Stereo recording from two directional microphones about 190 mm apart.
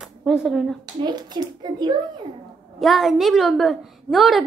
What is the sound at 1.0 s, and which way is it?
Speech, 20° right (ahead or behind).